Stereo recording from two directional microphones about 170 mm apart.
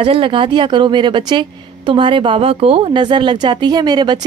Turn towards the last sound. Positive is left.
turn(degrees=-25)  # may be behind; listen again after turning